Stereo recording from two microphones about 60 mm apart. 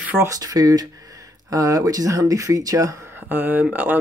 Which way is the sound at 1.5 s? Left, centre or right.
Right.